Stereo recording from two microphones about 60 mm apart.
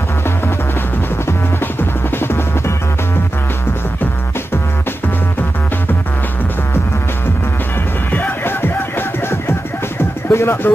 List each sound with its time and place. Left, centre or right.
1.2 s music: left
8.1 s music: left
9.3 s music: left